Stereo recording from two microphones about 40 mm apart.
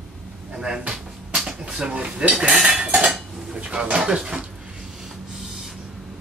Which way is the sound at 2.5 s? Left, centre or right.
Right.